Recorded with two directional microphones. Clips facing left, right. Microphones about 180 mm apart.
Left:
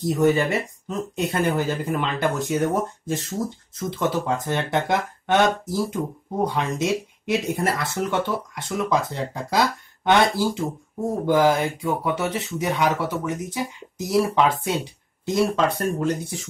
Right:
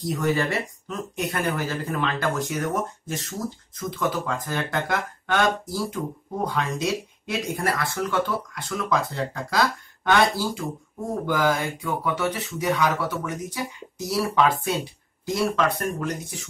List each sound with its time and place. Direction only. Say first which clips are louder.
0.0 s speech: left 5 dB; 20° left (ahead or behind)